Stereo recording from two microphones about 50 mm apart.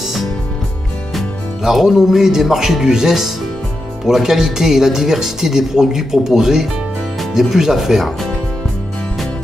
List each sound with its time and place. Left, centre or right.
1.6 s speech: centre